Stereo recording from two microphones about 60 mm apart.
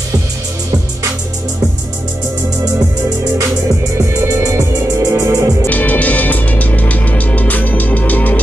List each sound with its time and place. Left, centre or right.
4.2 s music: right
5.0 s music: right
5.7 s music: left